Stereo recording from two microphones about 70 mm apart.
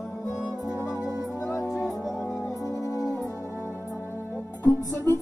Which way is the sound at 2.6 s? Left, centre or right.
Left.